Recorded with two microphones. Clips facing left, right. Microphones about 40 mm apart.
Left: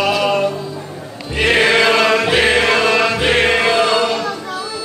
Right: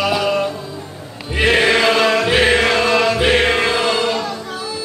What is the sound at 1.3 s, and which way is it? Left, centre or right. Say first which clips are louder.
Chant: left 1 dB; centre.